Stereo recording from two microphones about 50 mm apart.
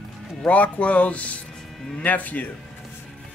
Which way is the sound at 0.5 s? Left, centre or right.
Left.